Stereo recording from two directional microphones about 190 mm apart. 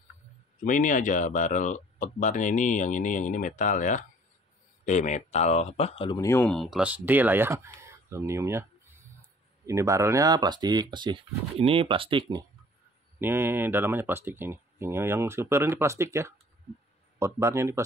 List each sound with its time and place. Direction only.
0.6 s speech: 45° left (ahead or behind)
6.1 s speech: 15° left (ahead or behind)
6.5 s speech: centre (ahead or behind); by 12.4 s 25° right (ahead or behind)
13.2 s speech: 10° right (ahead or behind)